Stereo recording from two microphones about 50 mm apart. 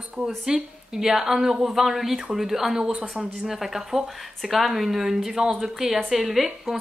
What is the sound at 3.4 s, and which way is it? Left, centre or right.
A woman's voice, centre.